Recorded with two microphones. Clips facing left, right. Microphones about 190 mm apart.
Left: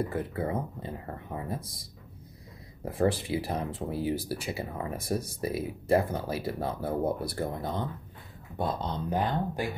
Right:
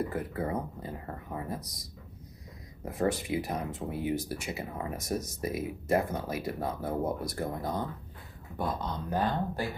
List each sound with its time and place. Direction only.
0.1 s speech: 30° left (ahead or behind)
9.1 s speech: 15° left (ahead or behind)